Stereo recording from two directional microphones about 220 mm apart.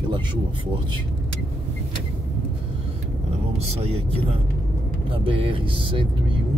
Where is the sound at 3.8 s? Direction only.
25° right (ahead or behind).